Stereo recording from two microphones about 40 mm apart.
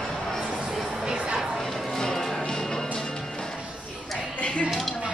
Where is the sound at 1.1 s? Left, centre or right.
Right.